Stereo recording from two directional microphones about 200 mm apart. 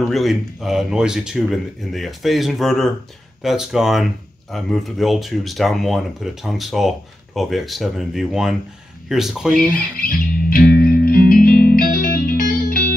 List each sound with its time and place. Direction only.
0.0 s speech: centre (ahead or behind)
9.9 s music: 45° left (ahead or behind)